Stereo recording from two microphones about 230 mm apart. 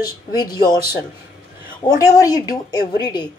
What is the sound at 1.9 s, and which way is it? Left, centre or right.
Speech, centre.